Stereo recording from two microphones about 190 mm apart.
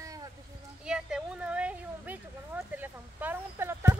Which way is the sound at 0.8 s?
5° right (ahead or behind).